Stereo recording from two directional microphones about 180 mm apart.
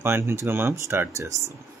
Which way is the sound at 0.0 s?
15° right (ahead or behind).